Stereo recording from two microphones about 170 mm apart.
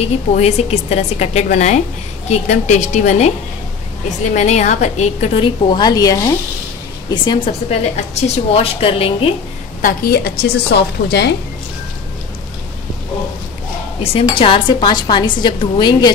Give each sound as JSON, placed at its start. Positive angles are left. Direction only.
{"t": 0.0, "sound": "a woman's voice", "side_deg": 40}
{"t": 4.3, "sound": "a woman's voice", "side_deg": 45}
{"t": 9.8, "sound": "a woman's voice", "side_deg": 60}
{"t": 14.4, "sound": "a woman's voice", "side_deg": 30}